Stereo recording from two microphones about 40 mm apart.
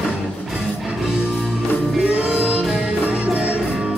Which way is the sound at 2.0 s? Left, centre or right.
Right.